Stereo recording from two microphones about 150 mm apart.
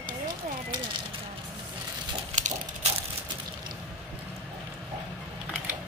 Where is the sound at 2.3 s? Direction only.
50° right (ahead or behind).